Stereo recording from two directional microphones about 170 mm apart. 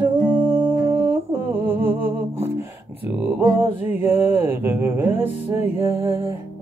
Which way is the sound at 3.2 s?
10° right (ahead or behind).